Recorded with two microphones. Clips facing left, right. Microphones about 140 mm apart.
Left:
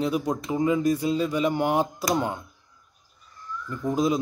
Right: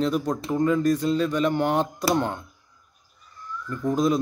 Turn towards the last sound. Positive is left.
turn(degrees=0)  # may be behind; listen again after turning